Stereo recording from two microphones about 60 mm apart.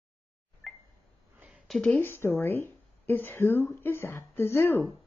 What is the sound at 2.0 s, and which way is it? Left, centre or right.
A woman's voice, left.